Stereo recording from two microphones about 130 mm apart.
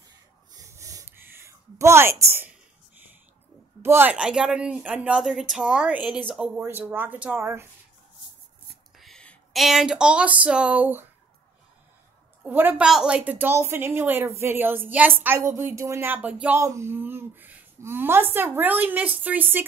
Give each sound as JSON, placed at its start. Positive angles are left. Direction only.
{"t": 0.5, "sound": "a sound", "side_deg": -25}
{"t": 3.8, "sound": "a woman's voice", "side_deg": -15}
{"t": 8.9, "sound": "speech", "side_deg": 0}
{"t": 12.4, "sound": "a woman's voice", "side_deg": -15}
{"t": 12.8, "sound": "a woman's voice", "side_deg": -5}